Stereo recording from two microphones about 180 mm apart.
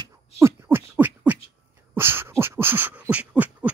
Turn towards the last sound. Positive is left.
turn(degrees=-10)  # may be behind; listen again after turning